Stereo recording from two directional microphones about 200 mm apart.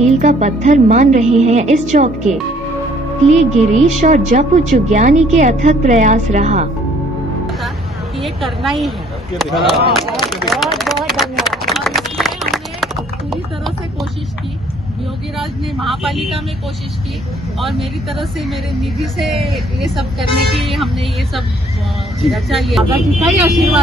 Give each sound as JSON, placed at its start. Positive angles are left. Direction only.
{"t": 0.2, "sound": "a woman's voice", "side_deg": -35}
{"t": 8.2, "sound": "a woman's voice", "side_deg": 0}
{"t": 10.5, "sound": "run", "side_deg": 0}
{"t": 15.3, "sound": "a woman's voice", "side_deg": 0}
{"t": 17.6, "sound": "a woman's voice", "side_deg": 0}
{"t": 22.2, "sound": "a woman's voice", "side_deg": 0}